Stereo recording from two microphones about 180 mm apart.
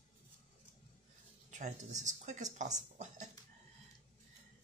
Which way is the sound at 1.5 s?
40° right (ahead or behind).